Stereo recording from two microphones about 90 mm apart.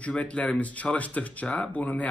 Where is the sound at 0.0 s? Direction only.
15° left (ahead or behind).